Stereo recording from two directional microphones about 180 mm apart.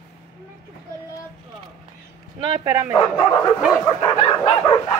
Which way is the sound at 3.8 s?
25° left (ahead or behind).